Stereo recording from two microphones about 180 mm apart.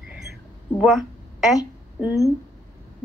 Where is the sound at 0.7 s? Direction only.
Centre (ahead or behind).